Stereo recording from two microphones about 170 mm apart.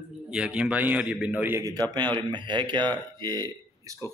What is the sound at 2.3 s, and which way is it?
Speech, 30° right (ahead or behind).